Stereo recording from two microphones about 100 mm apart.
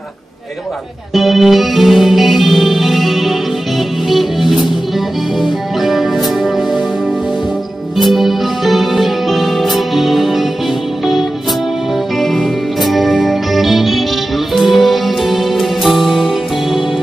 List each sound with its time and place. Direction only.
1.1 s music: centre (ahead or behind)
8.1 s music: centre (ahead or behind)
12.2 s music: centre (ahead or behind)